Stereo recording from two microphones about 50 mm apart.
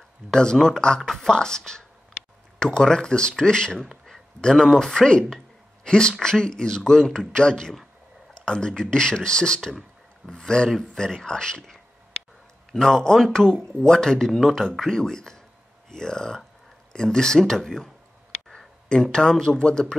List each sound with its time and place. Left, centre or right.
0.3 s speech: centre
2.6 s speech: centre
3.8 s a sound: centre
4.1 s speech: centre
18.5 s a sound: centre
19.1 s speech: centre